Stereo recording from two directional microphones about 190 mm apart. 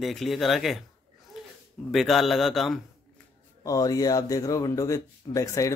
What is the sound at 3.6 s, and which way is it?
Speech, 20° left (ahead or behind).